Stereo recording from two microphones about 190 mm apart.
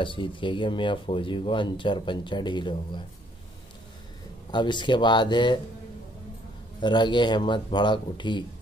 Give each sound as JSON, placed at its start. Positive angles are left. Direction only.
{"t": 0.0, "sound": "speech", "side_deg": 25}
{"t": 4.5, "sound": "speech", "side_deg": 25}
{"t": 6.8, "sound": "speech", "side_deg": 25}